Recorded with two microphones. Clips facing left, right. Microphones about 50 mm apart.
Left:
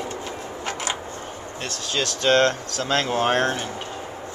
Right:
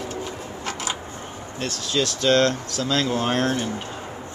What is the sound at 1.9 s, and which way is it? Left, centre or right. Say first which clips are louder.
Speech: even; left.